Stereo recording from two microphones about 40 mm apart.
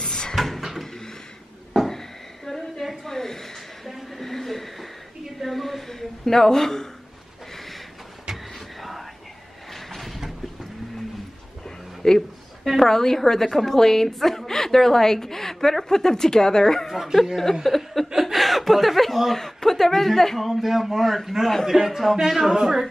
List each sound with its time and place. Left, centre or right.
0.0 s drawer open or close: centre
0.4 s a sound: centre
1.9 s a sound: centre
3.9 s chuckle: centre
5.2 s a woman's voice: centre
7.5 s a sound: centre
9.7 s train: centre
12.0 s a woman's voice: centre
16.8 s a man's voice: centre
17.6 s chuckle: centre
19.4 s a man's voice: centre